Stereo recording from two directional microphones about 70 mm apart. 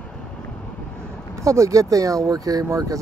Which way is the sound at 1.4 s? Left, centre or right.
Right.